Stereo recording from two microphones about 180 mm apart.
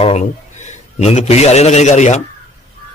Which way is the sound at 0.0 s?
40° left (ahead or behind).